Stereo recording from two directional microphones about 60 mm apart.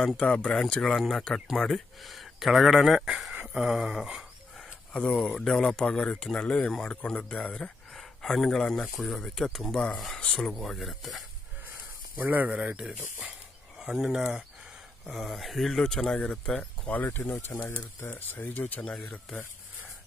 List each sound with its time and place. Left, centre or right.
0.2 s speech: centre
3.4 s a sound: centre
5.1 s speech: centre
12.2 s speech: right
13.7 s speech: centre
16.9 s speech: left
17.5 s speech: left
18.1 s speech: left